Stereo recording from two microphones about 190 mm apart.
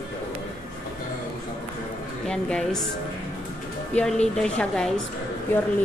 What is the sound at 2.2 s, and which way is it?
Speech, 5° left (ahead or behind).